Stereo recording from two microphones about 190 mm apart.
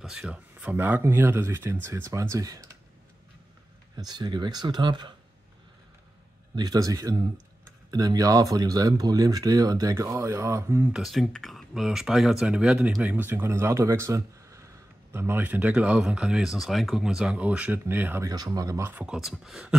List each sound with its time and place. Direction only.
0.0 s speech: 5° right (ahead or behind)
3.9 s speech: 20° right (ahead or behind)
6.5 s speech: 20° right (ahead or behind); by 19.8 s 5° right (ahead or behind)